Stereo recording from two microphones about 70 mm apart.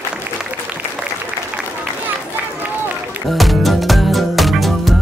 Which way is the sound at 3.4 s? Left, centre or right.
Centre.